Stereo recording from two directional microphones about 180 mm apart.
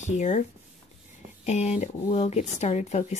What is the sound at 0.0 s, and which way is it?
Speech, 40° left (ahead or behind).